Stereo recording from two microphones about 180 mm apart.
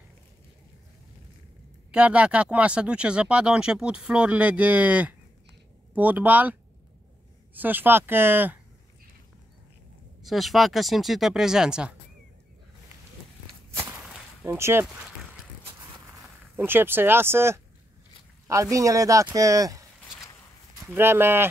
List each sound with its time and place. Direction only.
1.9 s a man's voice: 5° right (ahead or behind)
7.5 s a man's voice: 10° right (ahead or behind)
10.2 s speech: centre (ahead or behind)
14.4 s a man's voice: 15° right (ahead or behind)
16.5 s a man's voice: 10° right (ahead or behind)
20.1 s a sound: 20° left (ahead or behind)
20.8 s a man's voice: 10° right (ahead or behind)